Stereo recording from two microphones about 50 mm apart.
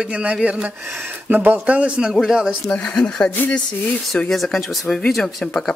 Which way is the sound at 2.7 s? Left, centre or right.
Left.